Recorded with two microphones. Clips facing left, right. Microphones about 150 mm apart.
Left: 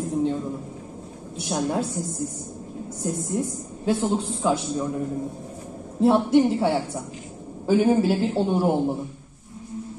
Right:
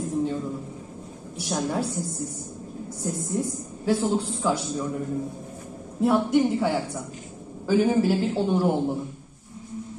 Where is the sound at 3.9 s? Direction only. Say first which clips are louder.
Even; 20° left (ahead or behind).